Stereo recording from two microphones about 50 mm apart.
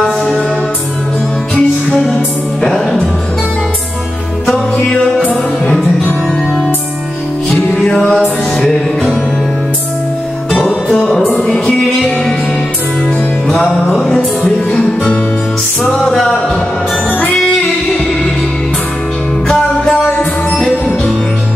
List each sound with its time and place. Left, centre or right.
0.2 s music: centre
1.5 s music: centre
4.8 s music: left
7.8 s music: centre
8.6 s music: centre
10.9 s music: centre
13.8 s music: centre
14.4 s music: left
15.8 s music: centre
19.4 s music: centre